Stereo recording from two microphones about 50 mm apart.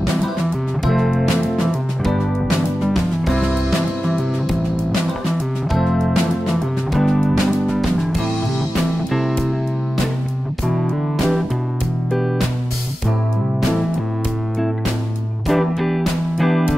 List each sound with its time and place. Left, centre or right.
0.8 s music: centre
2.8 s music: centre
5.8 s music: centre
10.7 s music: centre
15.4 s music: centre